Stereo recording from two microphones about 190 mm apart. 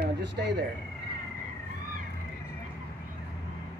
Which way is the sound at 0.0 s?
65° right (ahead or behind).